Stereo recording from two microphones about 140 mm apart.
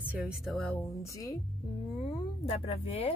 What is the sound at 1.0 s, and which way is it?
Speech, 25° left (ahead or behind).